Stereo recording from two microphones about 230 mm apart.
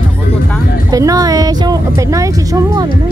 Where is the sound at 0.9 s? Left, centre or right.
Centre.